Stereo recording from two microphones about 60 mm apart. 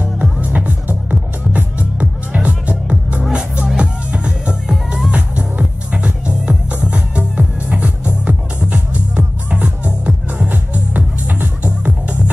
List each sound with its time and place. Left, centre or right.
0.0 s music: right